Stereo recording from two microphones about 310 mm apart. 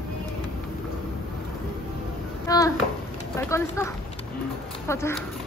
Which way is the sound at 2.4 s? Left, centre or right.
Centre.